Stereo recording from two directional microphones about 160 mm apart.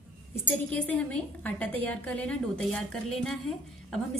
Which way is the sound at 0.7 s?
10° left (ahead or behind).